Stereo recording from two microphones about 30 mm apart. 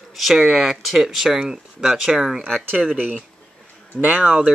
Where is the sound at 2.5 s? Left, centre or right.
Centre.